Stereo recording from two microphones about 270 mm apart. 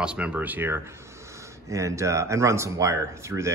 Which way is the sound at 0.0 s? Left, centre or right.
Centre.